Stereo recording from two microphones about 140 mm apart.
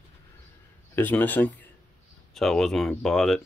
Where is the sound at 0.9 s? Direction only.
15° left (ahead or behind).